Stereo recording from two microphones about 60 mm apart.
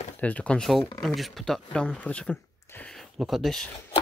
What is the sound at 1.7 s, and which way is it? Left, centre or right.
Speech, centre.